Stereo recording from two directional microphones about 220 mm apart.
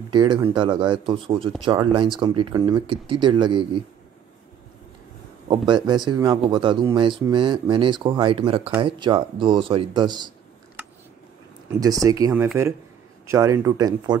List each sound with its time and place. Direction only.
0.1 s speech: 20° right (ahead or behind)
5.5 s speech: 20° right (ahead or behind)
11.8 s speech: 15° right (ahead or behind)